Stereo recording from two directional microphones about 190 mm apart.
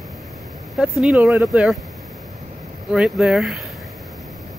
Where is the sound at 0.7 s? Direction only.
Centre (ahead or behind).